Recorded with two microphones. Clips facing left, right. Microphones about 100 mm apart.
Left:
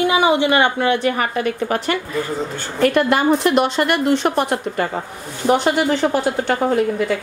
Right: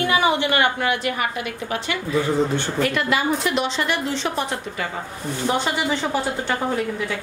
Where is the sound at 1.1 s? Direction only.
45° left (ahead or behind).